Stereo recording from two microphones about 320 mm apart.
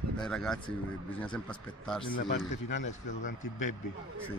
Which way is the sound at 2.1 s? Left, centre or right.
Left.